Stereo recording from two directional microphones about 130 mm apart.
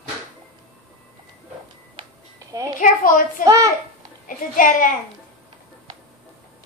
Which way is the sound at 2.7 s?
90° left.